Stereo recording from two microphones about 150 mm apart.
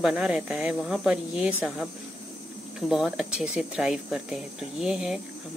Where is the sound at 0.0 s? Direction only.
5° right (ahead or behind).